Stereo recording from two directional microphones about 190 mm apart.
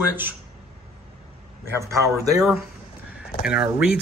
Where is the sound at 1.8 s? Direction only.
15° right (ahead or behind).